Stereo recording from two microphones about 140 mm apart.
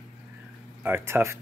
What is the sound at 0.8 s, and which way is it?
Speech, 15° right (ahead or behind).